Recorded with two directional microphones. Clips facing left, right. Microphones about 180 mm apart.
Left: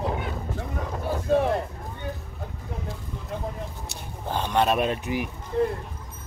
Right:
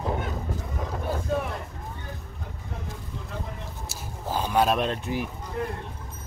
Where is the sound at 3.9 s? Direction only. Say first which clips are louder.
Right 1 dB; 5° right (ahead or behind).